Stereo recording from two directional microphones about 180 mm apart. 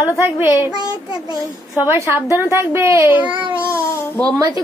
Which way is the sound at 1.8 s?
15° right (ahead or behind).